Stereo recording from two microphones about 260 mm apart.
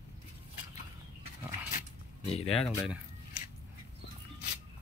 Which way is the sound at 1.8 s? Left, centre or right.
Left.